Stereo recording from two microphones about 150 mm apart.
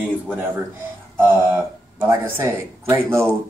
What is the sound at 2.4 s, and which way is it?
Speech, 15° right (ahead or behind).